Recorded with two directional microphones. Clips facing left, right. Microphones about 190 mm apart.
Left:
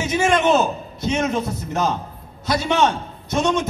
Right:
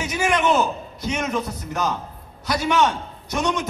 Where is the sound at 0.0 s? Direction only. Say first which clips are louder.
Left 3 dB; 25° left (ahead or behind).